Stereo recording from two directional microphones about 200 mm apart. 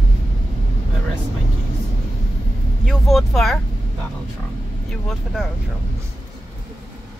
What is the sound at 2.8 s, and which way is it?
Vehicle, centre (ahead or behind).